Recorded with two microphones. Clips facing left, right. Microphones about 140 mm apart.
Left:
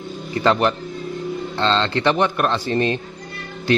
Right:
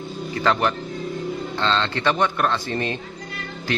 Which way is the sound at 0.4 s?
20° left (ahead or behind).